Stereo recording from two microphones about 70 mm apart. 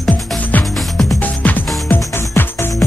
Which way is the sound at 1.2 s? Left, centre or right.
Left.